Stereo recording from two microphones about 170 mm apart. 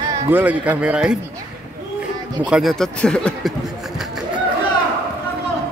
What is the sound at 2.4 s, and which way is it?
Speech, 5° right (ahead or behind).